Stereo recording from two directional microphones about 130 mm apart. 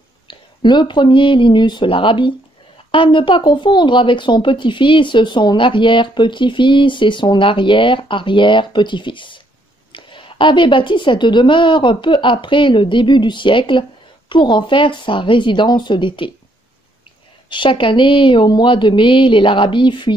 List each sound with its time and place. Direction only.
0.3 s speech: 35° left (ahead or behind)
17.5 s speech: 40° left (ahead or behind)